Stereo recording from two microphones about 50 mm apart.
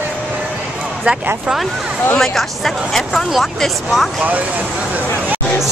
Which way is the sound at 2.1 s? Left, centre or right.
Centre.